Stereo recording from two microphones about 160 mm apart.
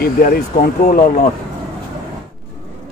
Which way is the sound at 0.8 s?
55° left (ahead or behind).